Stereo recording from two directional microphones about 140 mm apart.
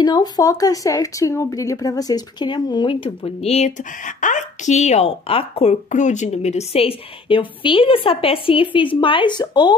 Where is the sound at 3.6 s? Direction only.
65° left (ahead or behind).